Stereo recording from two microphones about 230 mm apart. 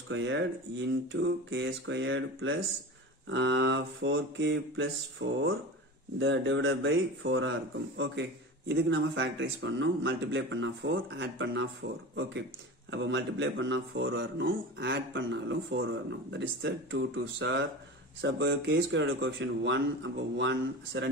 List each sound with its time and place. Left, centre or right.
0.1 s speech: right
12.9 s speech: right